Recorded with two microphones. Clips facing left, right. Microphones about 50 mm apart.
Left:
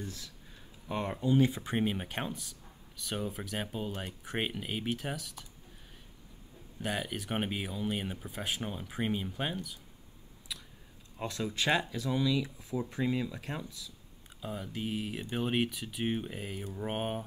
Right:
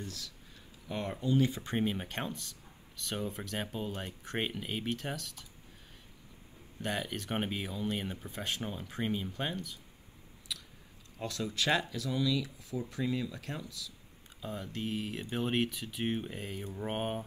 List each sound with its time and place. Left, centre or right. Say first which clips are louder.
0.0 s speech: left 1 dB; left; by 5.5 s centre
6.8 s speech: left 1 dB; centre
11.1 s speech: left 1 dB; left
14.4 s speech: left 1 dB; centre